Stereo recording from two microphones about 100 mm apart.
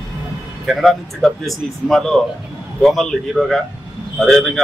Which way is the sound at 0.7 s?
Centre (ahead or behind).